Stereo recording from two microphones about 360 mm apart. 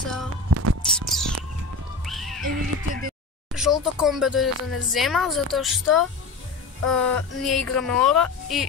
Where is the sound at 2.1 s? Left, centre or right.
Centre.